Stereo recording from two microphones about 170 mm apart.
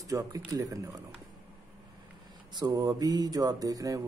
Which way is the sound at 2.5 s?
25° right (ahead or behind).